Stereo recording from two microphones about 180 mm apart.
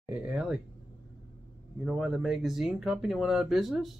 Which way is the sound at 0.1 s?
5° right (ahead or behind).